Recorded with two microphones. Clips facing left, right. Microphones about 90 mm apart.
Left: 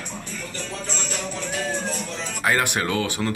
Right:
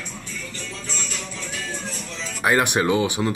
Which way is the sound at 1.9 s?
50° left (ahead or behind).